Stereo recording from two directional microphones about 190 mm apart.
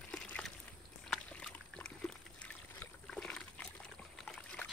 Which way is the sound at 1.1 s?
5° left (ahead or behind).